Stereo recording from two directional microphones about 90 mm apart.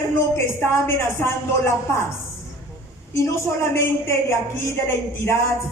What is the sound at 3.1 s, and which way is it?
A woman's voice, 35° left (ahead or behind).